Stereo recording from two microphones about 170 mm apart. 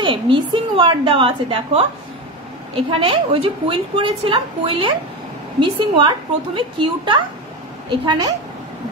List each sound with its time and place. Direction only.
0.0 s a woman's voice: 30° right (ahead or behind)